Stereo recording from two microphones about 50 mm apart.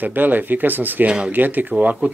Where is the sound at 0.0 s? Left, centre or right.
Right.